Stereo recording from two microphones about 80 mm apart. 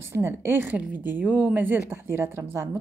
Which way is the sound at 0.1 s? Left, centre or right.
Right.